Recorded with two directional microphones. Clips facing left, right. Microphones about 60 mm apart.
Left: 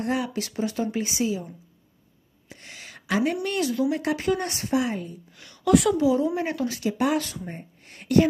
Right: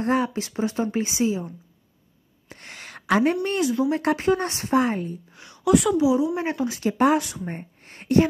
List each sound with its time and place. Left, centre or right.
0.0 s speech: right
2.5 s a sound: right
3.4 s speech: right
3.9 s a woman's voice: right
5.4 s a sound: right
5.7 s a woman's voice: centre
6.3 s speech: right
6.8 s a woman's voice: right
7.2 s speech: centre
7.4 s speech: right